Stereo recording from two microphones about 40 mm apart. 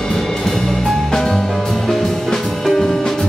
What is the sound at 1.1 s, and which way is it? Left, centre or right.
Music, centre.